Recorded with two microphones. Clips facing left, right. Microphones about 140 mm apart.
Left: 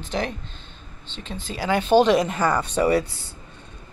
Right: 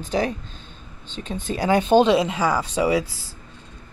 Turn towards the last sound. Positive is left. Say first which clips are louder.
# left 1 dB
turn(degrees=0)  # may be behind; listen again after turning